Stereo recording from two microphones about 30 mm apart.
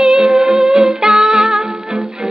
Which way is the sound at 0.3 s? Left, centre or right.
Centre.